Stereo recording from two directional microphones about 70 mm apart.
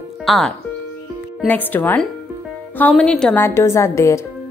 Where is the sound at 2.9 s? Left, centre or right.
Centre.